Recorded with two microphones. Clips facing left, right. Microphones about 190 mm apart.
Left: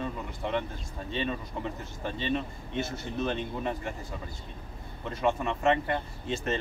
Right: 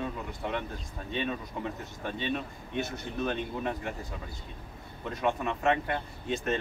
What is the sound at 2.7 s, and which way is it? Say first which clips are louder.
Speech: even; 20° right (ahead or behind).